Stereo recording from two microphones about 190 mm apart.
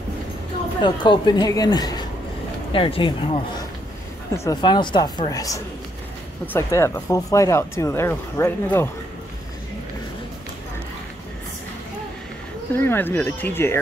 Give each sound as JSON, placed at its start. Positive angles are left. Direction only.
{"t": 0.8, "sound": "speech", "side_deg": 25}
{"t": 12.7, "sound": "speech", "side_deg": 10}